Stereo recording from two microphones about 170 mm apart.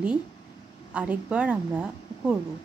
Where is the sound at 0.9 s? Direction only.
5° right (ahead or behind).